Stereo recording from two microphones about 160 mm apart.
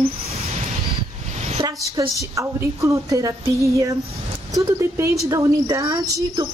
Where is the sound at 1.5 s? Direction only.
30° right (ahead or behind).